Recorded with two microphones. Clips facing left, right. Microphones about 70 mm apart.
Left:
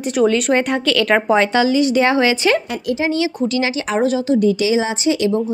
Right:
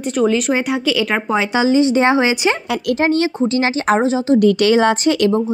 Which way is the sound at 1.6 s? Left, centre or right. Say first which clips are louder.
Right 1 dB; right.